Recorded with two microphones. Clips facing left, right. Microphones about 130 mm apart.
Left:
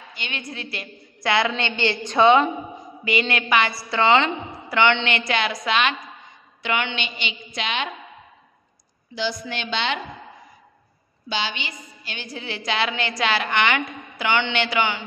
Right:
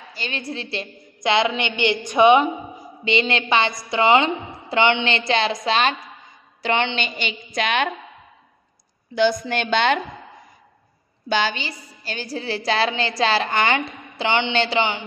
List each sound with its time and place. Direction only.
0.1 s a woman's voice: 35° right (ahead or behind); by 2.5 s 15° right (ahead or behind)
3.1 s a woman's voice: 25° right (ahead or behind)
7.0 s a woman's voice: 45° right (ahead or behind)
9.1 s a woman's voice: 50° right (ahead or behind)
11.2 s a woman's voice: 50° right (ahead or behind); by 15.0 s 20° right (ahead or behind)